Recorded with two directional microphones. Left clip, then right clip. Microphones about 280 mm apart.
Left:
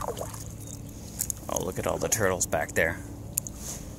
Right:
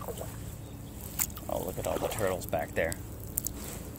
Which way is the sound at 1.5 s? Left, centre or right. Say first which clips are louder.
Left 3 dB; left.